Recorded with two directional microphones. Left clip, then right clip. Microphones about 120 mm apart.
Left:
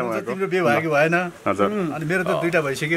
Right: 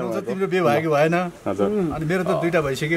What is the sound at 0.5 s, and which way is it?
A man's voice, 5° right (ahead or behind).